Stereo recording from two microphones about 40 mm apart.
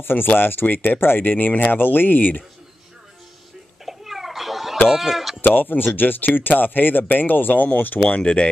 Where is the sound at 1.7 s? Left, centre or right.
Left.